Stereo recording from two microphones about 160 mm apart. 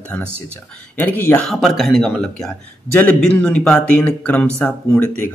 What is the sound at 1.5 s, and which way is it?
Speech, centre (ahead or behind).